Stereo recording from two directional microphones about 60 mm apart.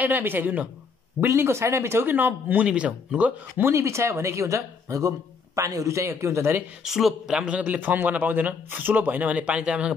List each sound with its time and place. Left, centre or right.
0.0 s speech: right
1.2 s speech: right
2.0 s speech: right
2.6 s a man's voice: centre
3.6 s speech: right
6.8 s speech: centre
7.3 s a man's voice: right